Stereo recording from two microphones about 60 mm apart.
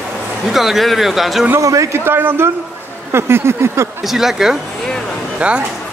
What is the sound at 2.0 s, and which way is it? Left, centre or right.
Speech, right.